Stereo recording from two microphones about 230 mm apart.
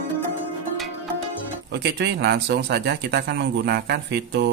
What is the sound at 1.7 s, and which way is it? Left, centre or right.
Speech, right.